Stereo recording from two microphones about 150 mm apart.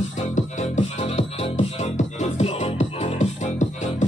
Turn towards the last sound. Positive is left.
turn(degrees=50)  # may be behind; listen again after turning